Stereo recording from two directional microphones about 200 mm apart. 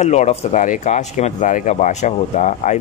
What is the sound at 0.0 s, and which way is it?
Speech, 35° left (ahead or behind).